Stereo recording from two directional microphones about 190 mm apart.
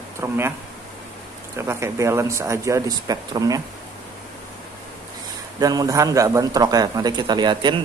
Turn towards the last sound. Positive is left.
turn(degrees=-25)  # may be behind; listen again after turning